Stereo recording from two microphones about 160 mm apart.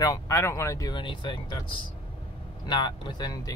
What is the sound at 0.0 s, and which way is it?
Speech, 20° left (ahead or behind).